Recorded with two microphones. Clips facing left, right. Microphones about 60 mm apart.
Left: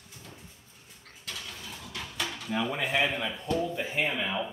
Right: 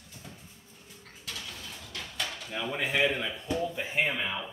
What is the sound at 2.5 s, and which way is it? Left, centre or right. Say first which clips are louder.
Dishes: left 2 dB; centre.